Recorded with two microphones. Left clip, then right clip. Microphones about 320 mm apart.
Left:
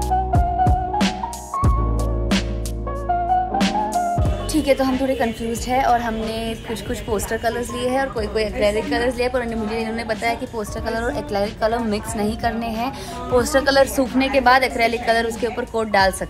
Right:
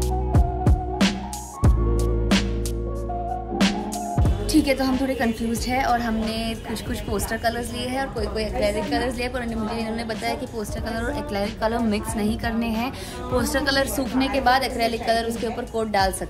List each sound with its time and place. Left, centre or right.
0.3 s music: centre
2.3 s music: centre
3.5 s a woman's voice: centre
10.9 s a woman's voice: centre; by 16.2 s left